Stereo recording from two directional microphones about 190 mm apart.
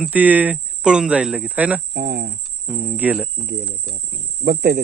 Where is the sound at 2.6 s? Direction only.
5° right (ahead or behind).